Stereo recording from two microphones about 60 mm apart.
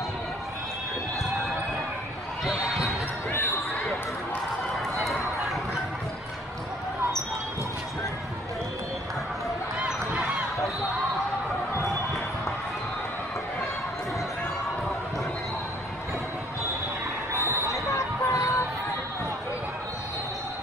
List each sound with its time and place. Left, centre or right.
4.7 s a sound: centre
9.8 s run: centre
17.6 s basketball bounce: left